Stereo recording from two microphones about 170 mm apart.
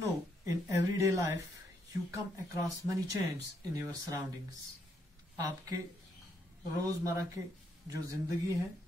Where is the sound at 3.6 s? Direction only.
20° right (ahead or behind).